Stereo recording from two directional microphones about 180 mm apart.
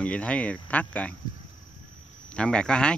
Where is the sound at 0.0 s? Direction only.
5° left (ahead or behind).